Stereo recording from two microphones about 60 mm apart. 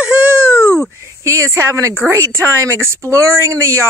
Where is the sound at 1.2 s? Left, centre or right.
Right.